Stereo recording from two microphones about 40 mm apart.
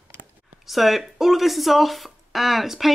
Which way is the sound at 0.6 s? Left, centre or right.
Centre.